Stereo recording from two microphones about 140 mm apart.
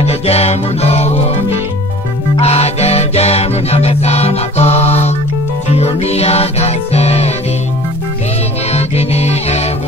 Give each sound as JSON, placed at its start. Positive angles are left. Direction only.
{"t": 0.0, "sound": "music", "side_deg": 50}
{"t": 2.4, "sound": "music", "side_deg": 50}
{"t": 8.7, "sound": "music", "side_deg": 50}